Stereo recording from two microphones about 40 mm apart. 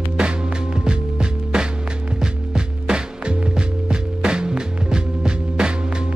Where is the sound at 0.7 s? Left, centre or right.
Right.